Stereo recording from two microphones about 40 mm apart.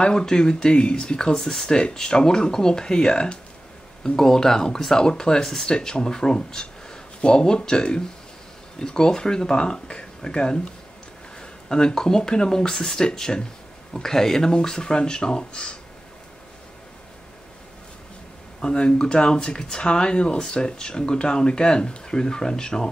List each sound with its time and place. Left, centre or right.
0.0 s speech: centre
1.7 s speech: left
4.2 s speech: centre
11.7 s speech: centre
18.6 s speech: left